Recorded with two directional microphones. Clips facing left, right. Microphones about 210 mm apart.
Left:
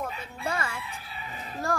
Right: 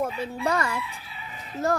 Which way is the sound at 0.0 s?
40° right (ahead or behind).